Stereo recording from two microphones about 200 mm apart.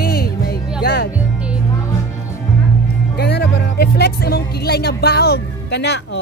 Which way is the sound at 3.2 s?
55° left (ahead or behind).